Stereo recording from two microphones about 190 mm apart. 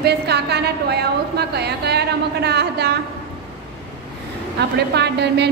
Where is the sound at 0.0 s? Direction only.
60° right (ahead or behind).